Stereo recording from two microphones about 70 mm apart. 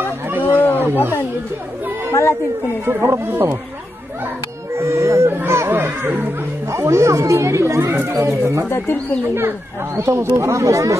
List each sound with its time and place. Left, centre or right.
0.4 s a sound: left
0.7 s roaring cats: right
2.8 s speech: right
4.7 s speech: right
6.7 s speech: right
8.3 s speech: right
8.6 s speech: left
9.9 s speech: right